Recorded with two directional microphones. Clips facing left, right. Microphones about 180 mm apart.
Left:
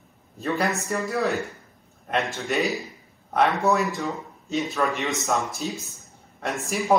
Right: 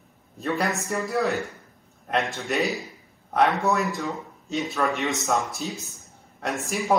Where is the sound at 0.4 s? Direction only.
Centre (ahead or behind).